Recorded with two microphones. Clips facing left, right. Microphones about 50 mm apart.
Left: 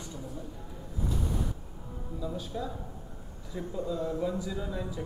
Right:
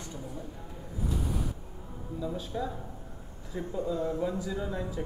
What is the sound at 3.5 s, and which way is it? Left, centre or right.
Speech, centre.